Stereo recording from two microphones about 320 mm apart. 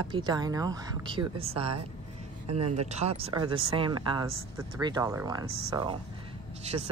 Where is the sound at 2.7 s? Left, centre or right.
Centre.